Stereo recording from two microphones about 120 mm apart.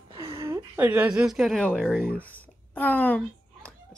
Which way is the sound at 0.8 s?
10° right (ahead or behind).